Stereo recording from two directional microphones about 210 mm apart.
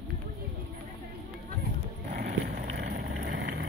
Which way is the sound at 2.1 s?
45° right (ahead or behind).